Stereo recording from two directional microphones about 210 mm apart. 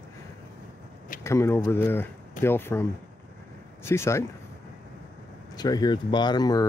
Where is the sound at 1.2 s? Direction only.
15° left (ahead or behind).